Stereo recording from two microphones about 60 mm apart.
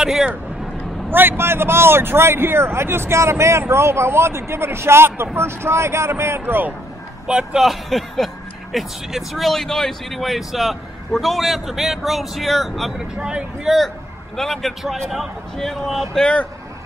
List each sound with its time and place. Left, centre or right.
0.0 s speech: centre
1.1 s speech: right
6.4 s speech: right
7.5 s speech: centre
13.1 s speech: centre
14.3 s speech: centre